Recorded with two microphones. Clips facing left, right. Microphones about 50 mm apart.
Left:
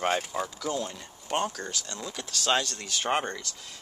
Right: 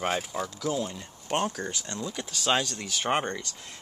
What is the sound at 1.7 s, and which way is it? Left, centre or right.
Speech, right.